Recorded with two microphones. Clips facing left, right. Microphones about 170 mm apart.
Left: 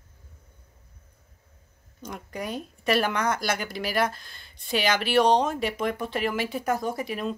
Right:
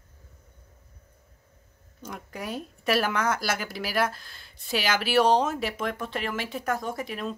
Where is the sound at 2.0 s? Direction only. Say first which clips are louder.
Left 2 dB; 5° right (ahead or behind).